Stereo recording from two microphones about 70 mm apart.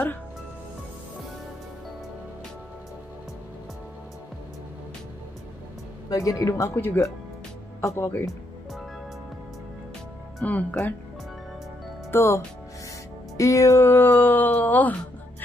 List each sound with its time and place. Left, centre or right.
6.0 s speech: left
6.7 s speech: left
7.8 s speech: left
10.4 s speech: left
12.1 s speech: left
13.4 s music: left
13.7 s speech: left